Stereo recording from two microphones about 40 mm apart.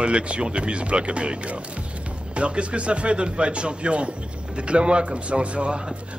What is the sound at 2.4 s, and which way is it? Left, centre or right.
A man's voice, right.